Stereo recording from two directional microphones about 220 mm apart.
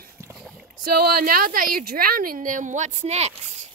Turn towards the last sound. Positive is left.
turn(degrees=-30)  # may be behind; listen again after turning